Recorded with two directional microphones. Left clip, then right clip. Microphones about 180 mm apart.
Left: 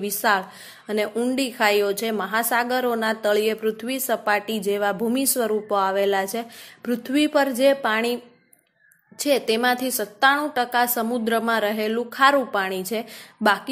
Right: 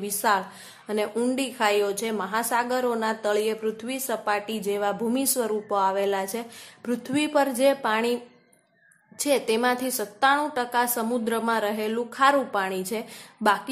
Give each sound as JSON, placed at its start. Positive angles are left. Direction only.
{"t": 0.0, "sound": "a woman's voice", "side_deg": 15}
{"t": 9.2, "sound": "a woman's voice", "side_deg": 15}